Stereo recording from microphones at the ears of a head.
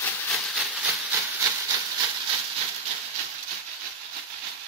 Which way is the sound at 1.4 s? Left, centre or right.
Right.